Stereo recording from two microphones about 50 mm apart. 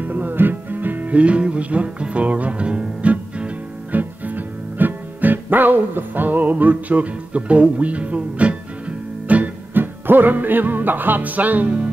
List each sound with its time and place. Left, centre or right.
0.0 s music: right
9.8 s music: right